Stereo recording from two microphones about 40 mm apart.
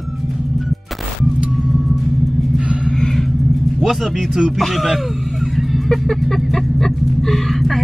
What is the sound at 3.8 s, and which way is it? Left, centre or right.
Speech, centre.